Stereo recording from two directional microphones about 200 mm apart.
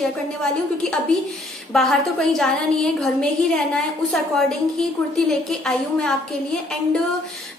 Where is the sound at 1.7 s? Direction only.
Centre (ahead or behind).